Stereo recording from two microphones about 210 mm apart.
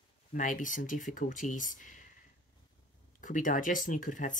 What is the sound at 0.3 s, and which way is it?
Speech, 40° left (ahead or behind).